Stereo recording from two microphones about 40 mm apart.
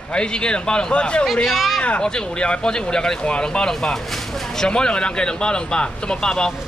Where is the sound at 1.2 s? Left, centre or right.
Centre.